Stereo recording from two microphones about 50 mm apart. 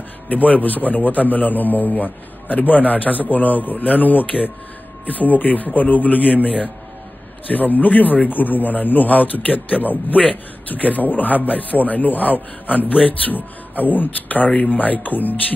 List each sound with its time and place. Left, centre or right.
0.3 s a man's voice: left
7.5 s a man's voice: left